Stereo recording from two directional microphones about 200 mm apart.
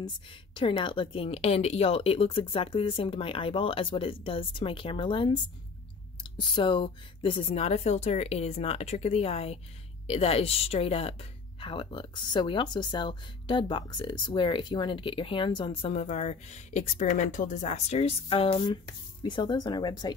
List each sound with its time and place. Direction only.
0.6 s speech: 25° left (ahead or behind)